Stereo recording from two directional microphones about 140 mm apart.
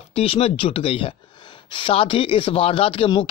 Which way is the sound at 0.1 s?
45° left (ahead or behind).